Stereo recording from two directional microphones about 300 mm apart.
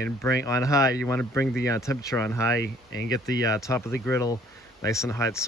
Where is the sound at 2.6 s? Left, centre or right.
Right.